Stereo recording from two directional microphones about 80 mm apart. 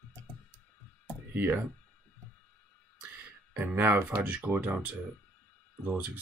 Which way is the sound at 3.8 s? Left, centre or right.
Right.